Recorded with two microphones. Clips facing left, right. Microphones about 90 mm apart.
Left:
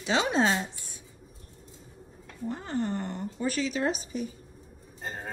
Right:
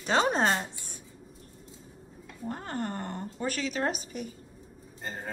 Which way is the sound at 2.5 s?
45° right (ahead or behind).